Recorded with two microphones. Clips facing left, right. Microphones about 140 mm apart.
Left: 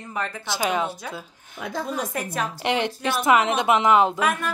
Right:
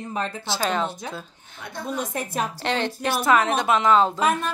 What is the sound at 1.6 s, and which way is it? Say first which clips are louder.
Speech: left 2 dB; 90° left.